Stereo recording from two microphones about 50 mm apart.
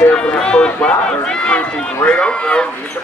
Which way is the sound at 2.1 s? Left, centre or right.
Centre.